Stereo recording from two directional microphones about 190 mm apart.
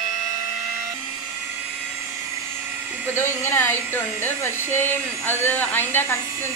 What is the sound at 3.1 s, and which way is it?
Speech, 10° left (ahead or behind).